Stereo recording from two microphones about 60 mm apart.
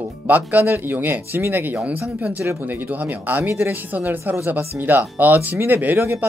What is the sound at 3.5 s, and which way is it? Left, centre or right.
Speech, right.